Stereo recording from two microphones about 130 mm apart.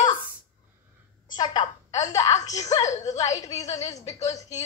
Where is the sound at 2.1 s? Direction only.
25° left (ahead or behind).